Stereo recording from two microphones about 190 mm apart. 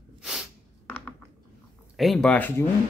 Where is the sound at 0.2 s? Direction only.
5° right (ahead or behind).